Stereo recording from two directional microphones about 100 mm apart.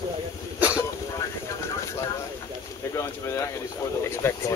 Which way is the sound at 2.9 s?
30° left (ahead or behind).